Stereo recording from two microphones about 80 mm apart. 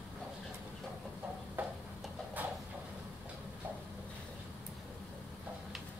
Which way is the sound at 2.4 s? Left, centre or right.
Right.